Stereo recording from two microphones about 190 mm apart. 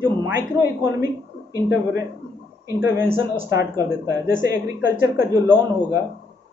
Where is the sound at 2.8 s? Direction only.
10° right (ahead or behind).